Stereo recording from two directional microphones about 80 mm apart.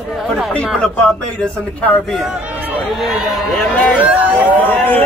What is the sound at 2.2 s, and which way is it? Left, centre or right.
Speech, centre.